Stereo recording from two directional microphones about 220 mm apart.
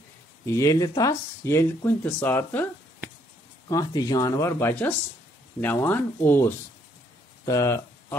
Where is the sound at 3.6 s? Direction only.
15° left (ahead or behind).